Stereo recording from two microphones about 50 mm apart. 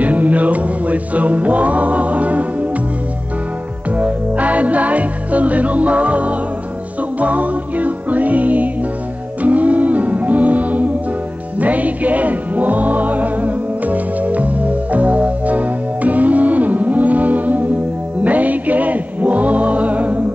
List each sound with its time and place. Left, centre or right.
0.0 s music: right
3.9 s music: right